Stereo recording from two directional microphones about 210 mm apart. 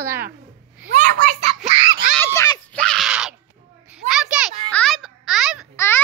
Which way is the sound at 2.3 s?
15° left (ahead or behind).